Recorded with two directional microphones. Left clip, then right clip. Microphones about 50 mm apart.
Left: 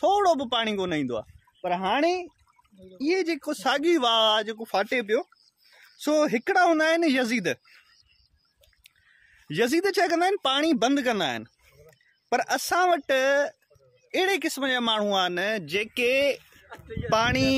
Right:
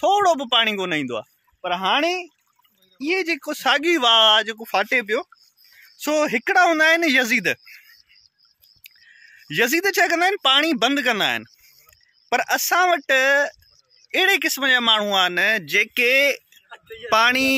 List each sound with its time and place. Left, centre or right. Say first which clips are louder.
0.0 s speech: right 4 dB; right
1.6 s speech: right 4 dB; right
5.9 s speech: right 3 dB; centre
8.8 s a man's voice: right 10 dB; centre
16.0 s speech: right 4 dB; centre
16.6 s speech: left 3 dB; centre